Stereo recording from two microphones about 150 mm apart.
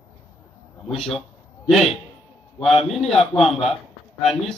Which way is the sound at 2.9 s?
Centre (ahead or behind).